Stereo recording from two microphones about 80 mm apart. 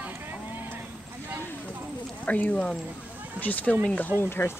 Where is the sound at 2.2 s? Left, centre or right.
Centre.